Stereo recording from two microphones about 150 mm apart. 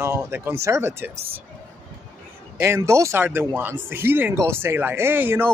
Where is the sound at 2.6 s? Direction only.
20° right (ahead or behind).